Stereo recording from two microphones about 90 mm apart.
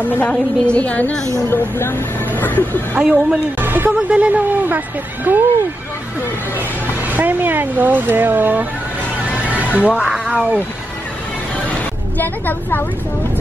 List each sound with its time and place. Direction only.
0.1 s a woman's voice: 15° left (ahead or behind)
3.0 s speech: 10° right (ahead or behind)
3.6 s speech: 20° right (ahead or behind)
7.1 s speech: 20° right (ahead or behind)
9.2 s a sound: 15° right (ahead or behind)
10.0 s speech: 5° right (ahead or behind)
12.2 s speech: 20° left (ahead or behind)